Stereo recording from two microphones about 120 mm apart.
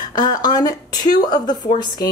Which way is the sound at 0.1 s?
35° left (ahead or behind).